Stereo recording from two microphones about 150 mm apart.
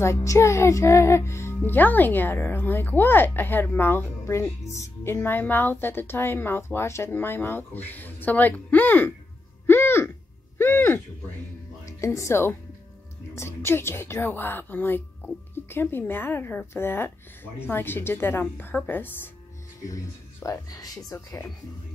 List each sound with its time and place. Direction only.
0.0 s a woman's voice: 20° left (ahead or behind)
9.7 s a sound: 15° left (ahead or behind)
10.6 s a woman's voice: 15° left (ahead or behind)